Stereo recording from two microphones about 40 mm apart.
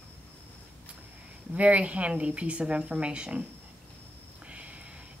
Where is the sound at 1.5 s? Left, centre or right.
Right.